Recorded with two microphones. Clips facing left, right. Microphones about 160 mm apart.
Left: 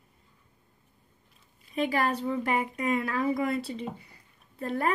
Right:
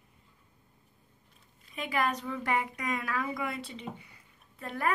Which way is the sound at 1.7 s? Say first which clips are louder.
Left 4 dB; 35° left (ahead or behind).